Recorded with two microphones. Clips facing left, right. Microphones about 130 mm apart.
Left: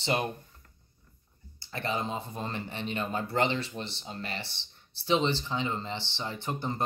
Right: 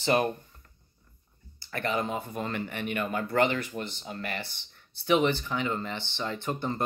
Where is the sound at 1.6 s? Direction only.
20° left (ahead or behind).